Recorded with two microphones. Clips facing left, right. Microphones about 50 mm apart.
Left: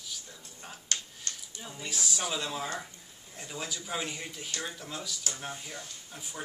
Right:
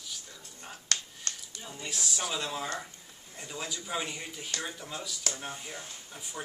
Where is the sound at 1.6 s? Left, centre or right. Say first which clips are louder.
Left 1 dB; centre.